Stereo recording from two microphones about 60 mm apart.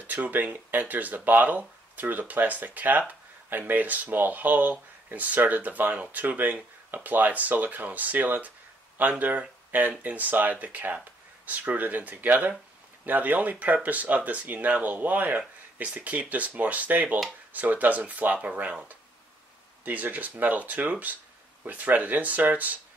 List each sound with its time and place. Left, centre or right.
0.0 s speech: right